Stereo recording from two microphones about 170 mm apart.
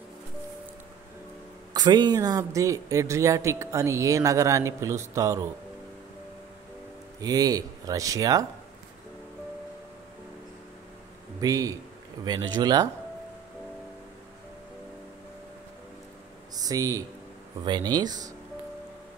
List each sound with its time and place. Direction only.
1.7 s speech: 25° right (ahead or behind)
7.2 s speech: 20° right (ahead or behind)
11.4 s speech: 20° right (ahead or behind)
16.5 s speech: 20° right (ahead or behind)